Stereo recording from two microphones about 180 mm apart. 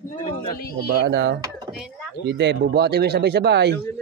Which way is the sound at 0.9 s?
75° right (ahead or behind).